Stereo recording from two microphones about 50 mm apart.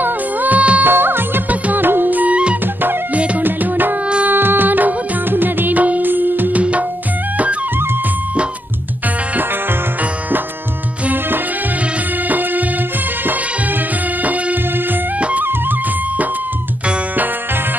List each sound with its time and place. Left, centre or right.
0.0 s music: right
0.8 s music: right
2.6 s music: right
3.2 s music: right
3.4 s music: right
4.0 s music: right
4.3 s music: right
6.6 s music: right
9.3 s music: right
11.1 s music: right
15.4 s music: right